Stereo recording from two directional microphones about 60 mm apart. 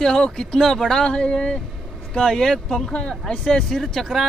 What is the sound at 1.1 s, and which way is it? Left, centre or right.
Speech, centre.